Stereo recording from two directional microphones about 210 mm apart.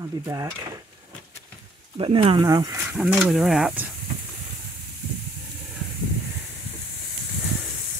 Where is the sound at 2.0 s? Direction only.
25° right (ahead or behind).